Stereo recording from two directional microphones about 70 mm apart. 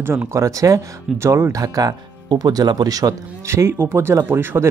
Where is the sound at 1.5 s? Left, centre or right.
Right.